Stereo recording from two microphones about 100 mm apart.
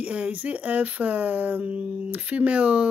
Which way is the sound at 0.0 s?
15° right (ahead or behind).